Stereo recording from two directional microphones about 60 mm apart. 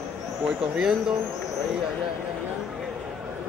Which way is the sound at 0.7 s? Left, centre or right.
Centre.